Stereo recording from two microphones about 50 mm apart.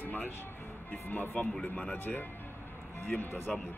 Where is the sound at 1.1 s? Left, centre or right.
Left.